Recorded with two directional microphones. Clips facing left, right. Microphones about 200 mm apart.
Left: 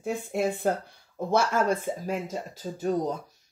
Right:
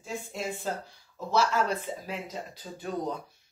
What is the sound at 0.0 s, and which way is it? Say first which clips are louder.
Speech: left 8 dB; 60° left (ahead or behind).